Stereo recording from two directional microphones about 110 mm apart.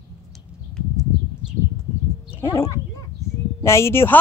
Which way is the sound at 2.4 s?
30° left (ahead or behind).